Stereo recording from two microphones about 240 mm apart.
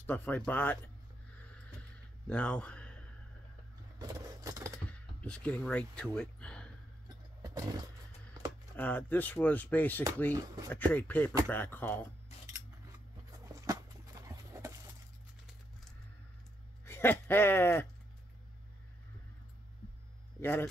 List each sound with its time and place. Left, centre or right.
0.0 s speech: centre
1.4 s a sound: centre
4.0 s vehicle: centre
4.9 s speech: centre
7.4 s roaring cats: centre
8.7 s speech: centre
10.3 s speech: centre
10.7 s speech: centre
13.6 s horse: centre
16.8 s speech: centre
20.3 s speech: centre